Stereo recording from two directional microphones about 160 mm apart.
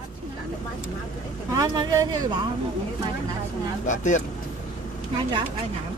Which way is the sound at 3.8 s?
50° left (ahead or behind).